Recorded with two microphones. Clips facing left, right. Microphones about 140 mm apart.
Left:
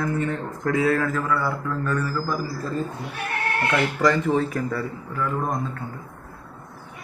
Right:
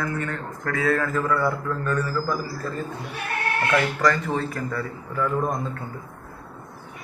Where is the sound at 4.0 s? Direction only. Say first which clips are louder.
Left 3 dB; 15° left (ahead or behind).